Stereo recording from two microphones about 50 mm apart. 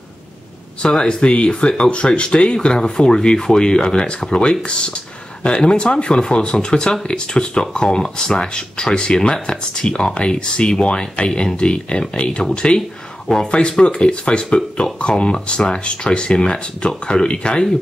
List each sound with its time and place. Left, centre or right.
0.8 s speech: centre